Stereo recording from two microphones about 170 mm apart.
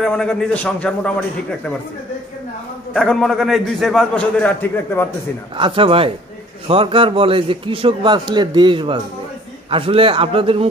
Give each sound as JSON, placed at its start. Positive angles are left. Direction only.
{"t": 0.0, "sound": "a man's voice", "side_deg": 5}
{"t": 2.9, "sound": "a man's voice", "side_deg": 5}
{"t": 5.6, "sound": "a man's voice", "side_deg": -30}